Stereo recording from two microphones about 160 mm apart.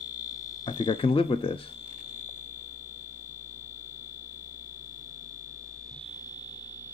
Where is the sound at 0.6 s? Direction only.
30° left (ahead or behind).